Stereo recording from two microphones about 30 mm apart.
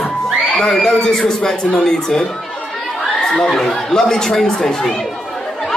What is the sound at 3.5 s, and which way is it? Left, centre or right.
Speech, centre.